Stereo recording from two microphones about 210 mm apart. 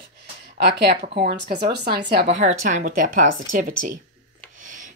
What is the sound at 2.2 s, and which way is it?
A woman's voice, 35° right (ahead or behind).